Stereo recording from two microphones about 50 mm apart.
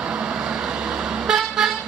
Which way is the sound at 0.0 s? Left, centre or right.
Right.